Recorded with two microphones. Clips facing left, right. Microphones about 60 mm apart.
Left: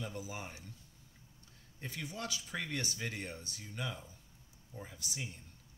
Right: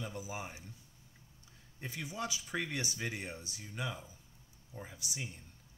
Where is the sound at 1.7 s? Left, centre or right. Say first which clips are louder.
Right 2 dB; centre.